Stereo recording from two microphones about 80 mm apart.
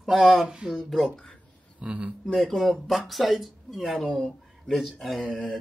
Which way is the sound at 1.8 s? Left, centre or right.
Centre.